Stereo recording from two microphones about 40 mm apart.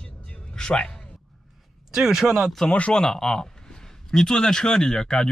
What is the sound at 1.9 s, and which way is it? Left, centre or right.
Speech, centre.